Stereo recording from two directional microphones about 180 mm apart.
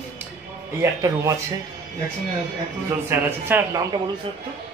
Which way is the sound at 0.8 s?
15° right (ahead or behind).